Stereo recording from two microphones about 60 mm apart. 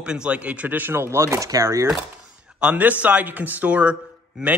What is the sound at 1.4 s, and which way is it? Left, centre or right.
Speech, right.